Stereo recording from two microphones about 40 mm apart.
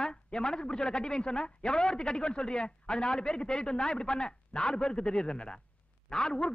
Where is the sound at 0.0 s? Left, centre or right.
Centre.